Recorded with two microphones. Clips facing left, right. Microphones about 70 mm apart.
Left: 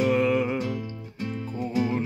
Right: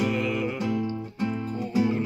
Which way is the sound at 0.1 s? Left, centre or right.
Left.